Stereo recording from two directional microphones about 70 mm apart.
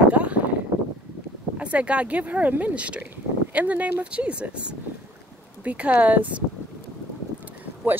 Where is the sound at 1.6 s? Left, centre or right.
Centre.